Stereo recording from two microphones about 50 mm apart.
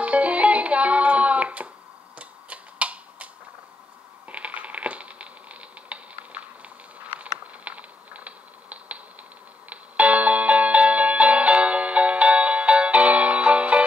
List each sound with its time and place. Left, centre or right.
0.0 s music: right
2.1 s tick-tock: right
4.3 s a sound: right
9.7 s music: right